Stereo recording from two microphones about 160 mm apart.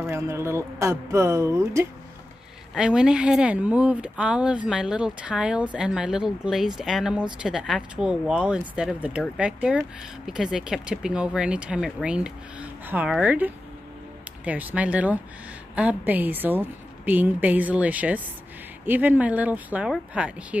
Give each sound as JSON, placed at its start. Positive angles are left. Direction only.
{"t": 0.1, "sound": "a woman's voice", "side_deg": -15}
{"t": 2.7, "sound": "a woman's voice", "side_deg": -5}